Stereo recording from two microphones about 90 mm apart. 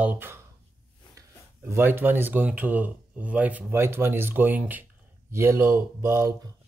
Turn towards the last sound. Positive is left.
turn(degrees=-35)  # may be behind; listen again after turning